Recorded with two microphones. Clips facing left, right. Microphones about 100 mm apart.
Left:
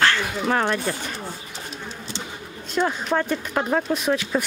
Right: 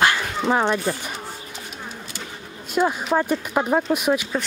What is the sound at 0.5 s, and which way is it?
Speech, 15° right (ahead or behind).